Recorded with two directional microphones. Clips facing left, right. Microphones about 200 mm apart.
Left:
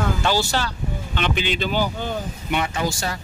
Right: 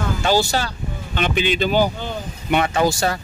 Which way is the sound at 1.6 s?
50° right (ahead or behind).